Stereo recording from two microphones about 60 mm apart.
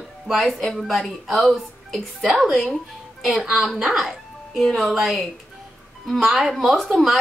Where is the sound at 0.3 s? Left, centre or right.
Centre.